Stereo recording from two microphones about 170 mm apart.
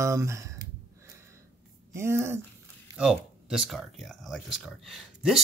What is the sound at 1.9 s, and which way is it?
Speech, 15° right (ahead or behind).